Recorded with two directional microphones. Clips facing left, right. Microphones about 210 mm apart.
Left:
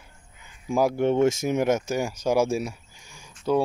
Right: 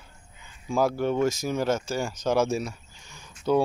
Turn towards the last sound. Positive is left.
turn(degrees=5)  # may be behind; listen again after turning